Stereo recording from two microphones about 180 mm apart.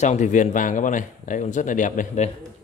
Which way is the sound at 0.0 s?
40° left (ahead or behind).